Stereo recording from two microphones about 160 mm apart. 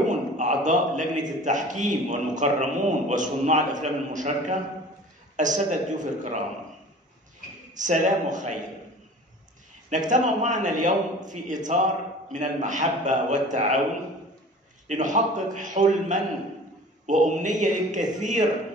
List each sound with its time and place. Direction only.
0.4 s a man's voice: 50° right (ahead or behind)
7.7 s a man's voice: 50° right (ahead or behind)
9.8 s a man's voice: 50° right (ahead or behind)
14.9 s a man's voice: 50° right (ahead or behind)